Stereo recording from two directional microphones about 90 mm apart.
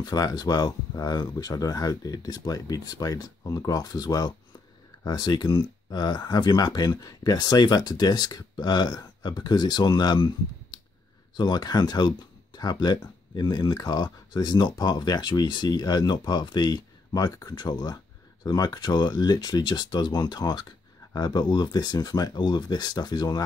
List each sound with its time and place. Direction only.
0.0 s speech: 45° left (ahead or behind)